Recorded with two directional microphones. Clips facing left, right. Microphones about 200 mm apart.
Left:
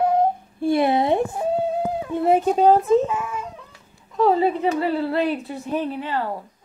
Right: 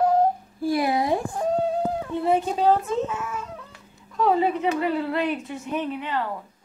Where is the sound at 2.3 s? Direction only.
40° left (ahead or behind).